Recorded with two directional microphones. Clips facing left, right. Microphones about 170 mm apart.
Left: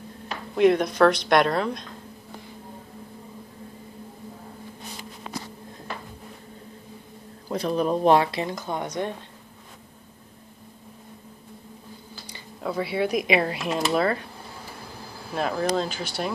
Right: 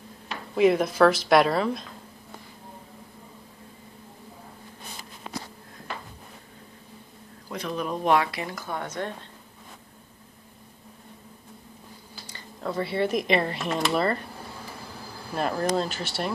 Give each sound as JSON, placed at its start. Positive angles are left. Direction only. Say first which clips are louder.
{"t": 0.6, "sound": "speech", "louder": "left 1 dB", "side_deg": -5}
{"t": 7.4, "sound": "speech", "louder": "left 6 dB", "side_deg": 35}
{"t": 12.3, "sound": "speech", "louder": "left 1 dB", "side_deg": 5}
{"t": 15.3, "sound": "speech", "louder": "left 1 dB", "side_deg": 0}